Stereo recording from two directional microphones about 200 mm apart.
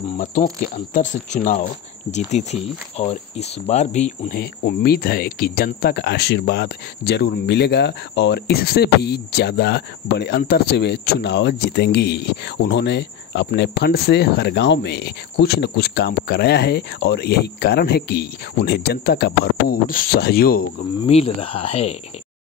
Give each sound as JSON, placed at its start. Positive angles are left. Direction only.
{"t": 0.2, "sound": "speech", "side_deg": 40}
{"t": 4.4, "sound": "speech", "side_deg": 50}
{"t": 21.1, "sound": "speech", "side_deg": 30}